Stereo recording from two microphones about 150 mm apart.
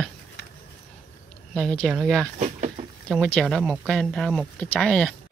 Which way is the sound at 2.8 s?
45° right (ahead or behind).